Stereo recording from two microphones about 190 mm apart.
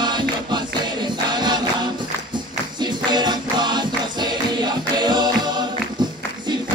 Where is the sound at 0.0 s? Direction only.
25° right (ahead or behind).